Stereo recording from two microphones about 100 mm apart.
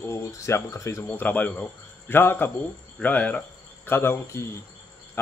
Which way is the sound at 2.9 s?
15° left (ahead or behind).